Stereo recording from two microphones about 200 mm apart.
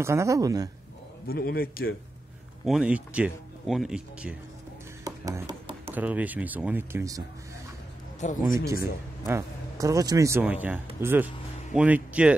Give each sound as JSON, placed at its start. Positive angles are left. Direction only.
{"t": 0.0, "sound": "a man's voice", "side_deg": -15}
{"t": 1.2, "sound": "a man's voice", "side_deg": 50}
{"t": 2.6, "sound": "speech", "side_deg": -5}
{"t": 5.0, "sound": "music", "side_deg": -15}
{"t": 5.9, "sound": "a man's voice", "side_deg": -10}
{"t": 8.2, "sound": "speech", "side_deg": 35}
{"t": 8.5, "sound": "a man's voice", "side_deg": -15}